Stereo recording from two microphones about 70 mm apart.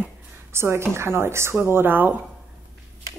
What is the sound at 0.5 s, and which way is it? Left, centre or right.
Speech, right.